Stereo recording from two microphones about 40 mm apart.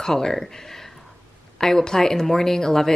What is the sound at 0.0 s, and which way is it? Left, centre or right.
Speech, centre.